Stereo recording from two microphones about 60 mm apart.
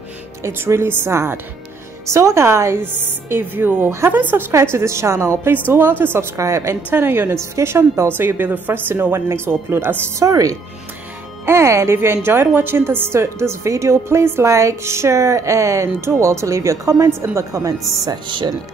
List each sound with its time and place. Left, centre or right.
0.4 s a woman's voice: right
2.8 s speech: right
4.7 s a woman's voice: right
5.7 s speech: right
6.1 s a woman's voice: right
6.9 s speech: right
7.5 s a woman's voice: right
8.2 s speech: right
10.2 s speech: right
11.4 s a woman's voice: right
14.5 s a woman's voice: right